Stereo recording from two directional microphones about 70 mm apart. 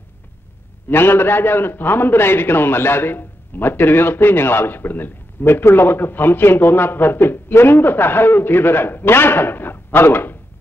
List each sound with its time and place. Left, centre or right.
0.8 s a man's voice: left